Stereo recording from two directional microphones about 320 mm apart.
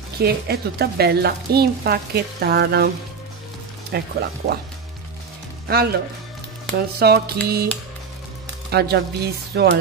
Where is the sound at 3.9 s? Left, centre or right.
Right.